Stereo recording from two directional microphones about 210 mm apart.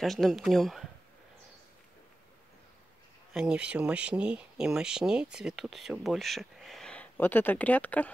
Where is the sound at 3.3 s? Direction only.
5° right (ahead or behind).